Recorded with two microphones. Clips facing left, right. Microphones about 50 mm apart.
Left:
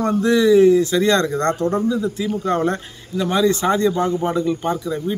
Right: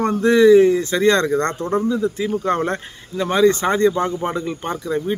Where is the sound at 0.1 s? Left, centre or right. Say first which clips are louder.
Right 3 dB; right.